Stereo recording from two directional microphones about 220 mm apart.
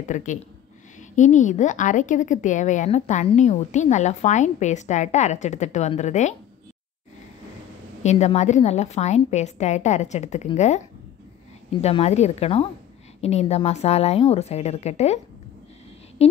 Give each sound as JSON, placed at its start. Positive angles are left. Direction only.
{"t": 0.1, "sound": "a woman's voice", "side_deg": 35}
{"t": 8.0, "sound": "a woman's voice", "side_deg": 30}
{"t": 11.8, "sound": "speech", "side_deg": 30}
{"t": 16.2, "sound": "speech", "side_deg": 30}